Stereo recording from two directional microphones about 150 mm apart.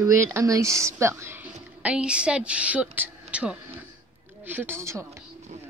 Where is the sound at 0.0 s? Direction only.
20° right (ahead or behind).